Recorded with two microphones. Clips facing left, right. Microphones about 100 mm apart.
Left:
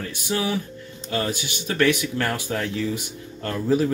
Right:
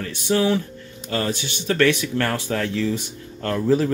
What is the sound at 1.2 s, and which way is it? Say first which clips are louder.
Speech: right 1 dB; 15° left (ahead or behind).